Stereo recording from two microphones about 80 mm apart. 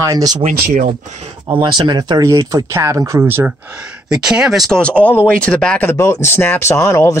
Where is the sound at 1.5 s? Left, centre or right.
Right.